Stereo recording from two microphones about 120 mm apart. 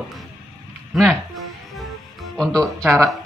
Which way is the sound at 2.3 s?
5° left (ahead or behind).